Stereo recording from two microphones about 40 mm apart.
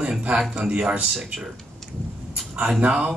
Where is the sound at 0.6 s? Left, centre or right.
Right.